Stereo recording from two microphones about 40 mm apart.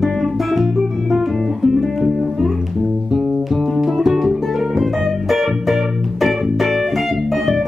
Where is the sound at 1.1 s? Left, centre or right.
Centre.